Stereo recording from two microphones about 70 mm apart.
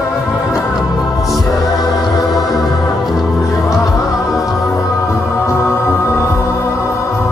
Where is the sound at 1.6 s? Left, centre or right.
Centre.